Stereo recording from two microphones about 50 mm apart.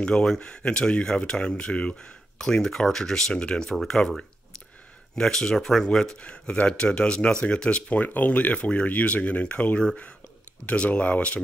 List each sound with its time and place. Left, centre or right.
0.0 s speech: centre
5.1 s speech: centre
6.2 s speech: left
8.0 s speech: left